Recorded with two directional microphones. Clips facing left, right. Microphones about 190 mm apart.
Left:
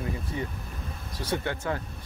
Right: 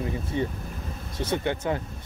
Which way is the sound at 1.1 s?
20° right (ahead or behind).